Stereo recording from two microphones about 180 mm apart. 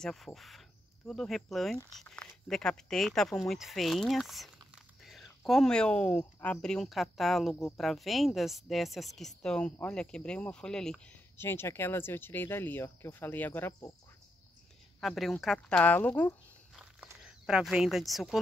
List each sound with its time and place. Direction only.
0.0 s speech: centre (ahead or behind)
15.0 s speech: centre (ahead or behind)
16.7 s a sound: 5° right (ahead or behind)